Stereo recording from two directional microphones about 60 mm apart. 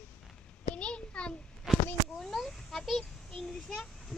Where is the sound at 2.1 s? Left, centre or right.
Centre.